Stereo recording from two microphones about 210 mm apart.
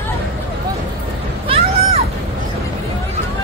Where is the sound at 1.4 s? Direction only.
25° right (ahead or behind).